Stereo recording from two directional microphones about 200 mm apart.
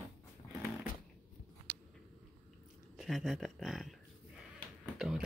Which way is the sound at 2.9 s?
Centre (ahead or behind).